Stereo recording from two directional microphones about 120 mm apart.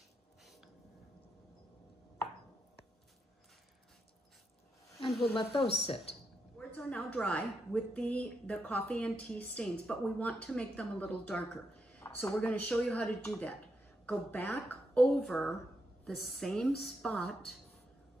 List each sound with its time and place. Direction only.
5.2 s speech: 50° left (ahead or behind)
6.6 s a woman's voice: 10° left (ahead or behind)